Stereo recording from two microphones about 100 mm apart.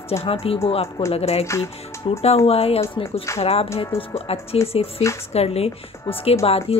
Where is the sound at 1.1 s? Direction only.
90° left.